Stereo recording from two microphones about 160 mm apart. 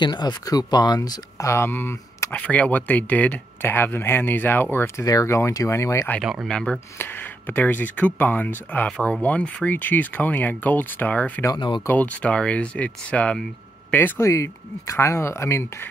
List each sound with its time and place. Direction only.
0.0 s speech: 30° left (ahead or behind)
6.2 s speech: centre (ahead or behind)
11.5 s speech: 30° left (ahead or behind)
11.8 s speech: 10° left (ahead or behind)